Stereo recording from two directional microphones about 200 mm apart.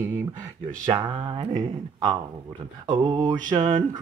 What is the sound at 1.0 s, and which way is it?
Mantra, 25° right (ahead or behind).